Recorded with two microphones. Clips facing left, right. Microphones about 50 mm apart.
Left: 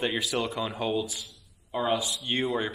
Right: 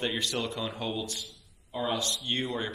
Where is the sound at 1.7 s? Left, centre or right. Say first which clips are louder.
Left 4 dB; left.